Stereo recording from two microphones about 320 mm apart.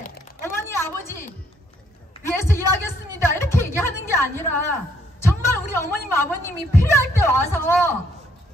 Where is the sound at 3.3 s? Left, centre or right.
Centre.